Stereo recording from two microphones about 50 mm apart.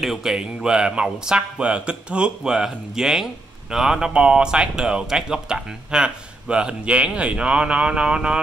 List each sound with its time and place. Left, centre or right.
0.0 s speech: centre